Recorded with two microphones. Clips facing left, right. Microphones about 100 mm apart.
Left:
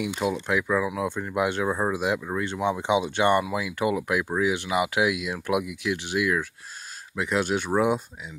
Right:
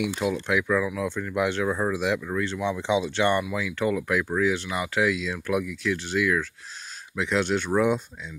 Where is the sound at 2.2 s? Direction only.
15° left (ahead or behind).